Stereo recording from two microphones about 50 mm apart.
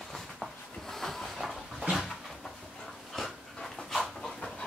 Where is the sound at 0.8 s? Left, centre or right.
Centre.